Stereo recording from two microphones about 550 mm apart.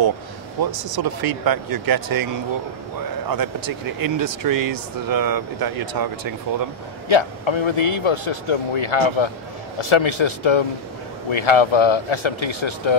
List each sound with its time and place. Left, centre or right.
0.6 s speech: right
3.3 s speech: right
7.1 s a man's voice: left